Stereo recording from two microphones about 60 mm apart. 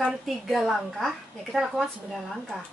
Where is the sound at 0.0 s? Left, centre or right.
Centre.